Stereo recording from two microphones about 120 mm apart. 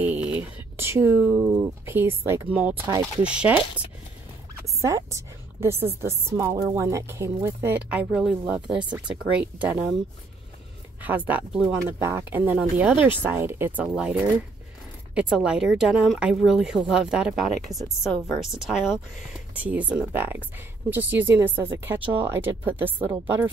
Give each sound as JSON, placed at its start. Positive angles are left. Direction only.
{"t": 0.0, "sound": "a sound", "side_deg": -10}
{"t": 1.6, "sound": "speech", "side_deg": -20}
{"t": 3.3, "sound": "speech", "side_deg": -10}
{"t": 4.8, "sound": "a woman's voice", "side_deg": -25}
{"t": 11.0, "sound": "a woman's voice", "side_deg": -15}